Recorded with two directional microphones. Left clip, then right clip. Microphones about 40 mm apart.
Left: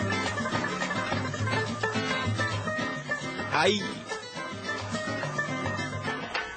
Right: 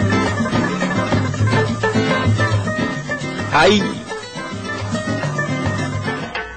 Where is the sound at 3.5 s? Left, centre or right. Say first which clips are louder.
Right 12 dB; centre.